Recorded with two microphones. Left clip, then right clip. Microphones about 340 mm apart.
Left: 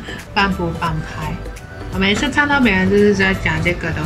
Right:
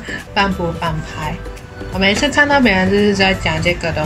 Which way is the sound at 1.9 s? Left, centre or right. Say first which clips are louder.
Right 3 dB; centre.